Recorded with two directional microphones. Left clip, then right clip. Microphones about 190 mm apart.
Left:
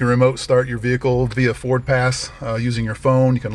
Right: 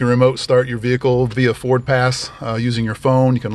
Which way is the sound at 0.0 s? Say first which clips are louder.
Right 2 dB; 10° right (ahead or behind).